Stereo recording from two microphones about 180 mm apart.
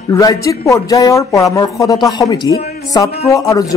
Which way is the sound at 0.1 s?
20° left (ahead or behind).